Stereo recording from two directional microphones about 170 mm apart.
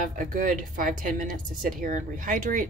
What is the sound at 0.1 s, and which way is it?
Speech, 50° right (ahead or behind).